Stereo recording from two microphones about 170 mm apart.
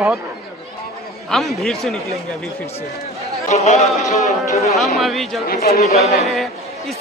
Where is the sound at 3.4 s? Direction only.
45° left (ahead or behind).